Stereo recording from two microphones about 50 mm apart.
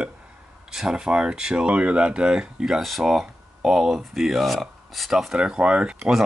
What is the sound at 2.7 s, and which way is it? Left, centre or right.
Speech, centre.